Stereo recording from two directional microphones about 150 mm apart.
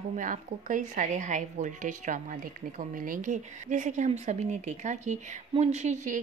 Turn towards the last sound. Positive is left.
turn(degrees=-55)  # may be behind; listen again after turning